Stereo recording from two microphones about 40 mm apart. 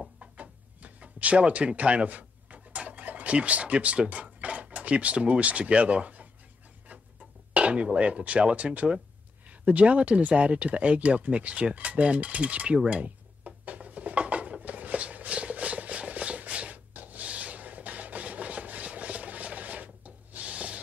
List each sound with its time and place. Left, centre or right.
0.2 s drawer open or close: right
1.7 s speech: right
7.5 s speech: right
12.8 s a sound: right